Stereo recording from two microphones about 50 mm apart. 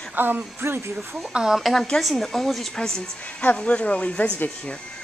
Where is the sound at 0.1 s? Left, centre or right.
Right.